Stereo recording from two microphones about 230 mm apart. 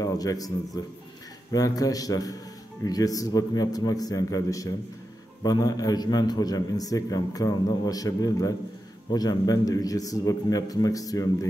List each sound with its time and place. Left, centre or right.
0.0 s a man's voice: centre